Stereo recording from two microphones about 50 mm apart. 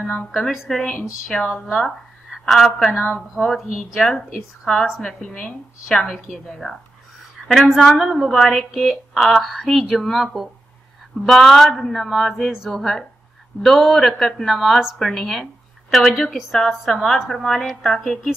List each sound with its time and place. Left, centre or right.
0.0 s speech: left
0.3 s speech: centre
1.3 s speech: centre
4.1 s speech: centre
4.8 s a woman's voice: centre
5.2 s speech: left
6.1 s speech: centre